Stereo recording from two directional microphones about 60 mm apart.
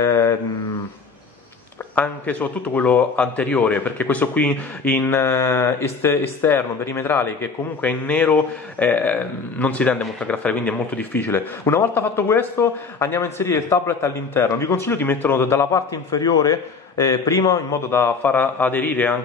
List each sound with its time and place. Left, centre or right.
0.0 s mantra: left
2.0 s a man's voice: left
7.8 s a man's voice: left
11.2 s speech: left
14.9 s a man's voice: left
16.1 s a man's voice: left
17.8 s speech: left
18.2 s a man's voice: left